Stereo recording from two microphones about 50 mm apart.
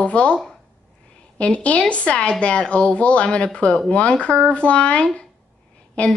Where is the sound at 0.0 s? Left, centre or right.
Left.